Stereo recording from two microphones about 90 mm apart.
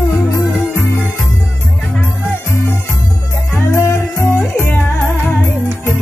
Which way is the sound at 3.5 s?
30° left (ahead or behind).